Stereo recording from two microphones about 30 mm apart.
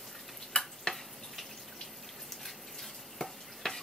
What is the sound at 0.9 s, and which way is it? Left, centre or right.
Frying, left.